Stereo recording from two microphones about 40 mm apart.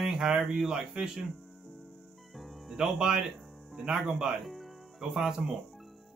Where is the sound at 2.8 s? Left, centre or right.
Centre.